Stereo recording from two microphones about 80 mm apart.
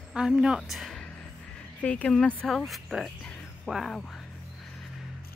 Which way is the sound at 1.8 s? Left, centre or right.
Centre.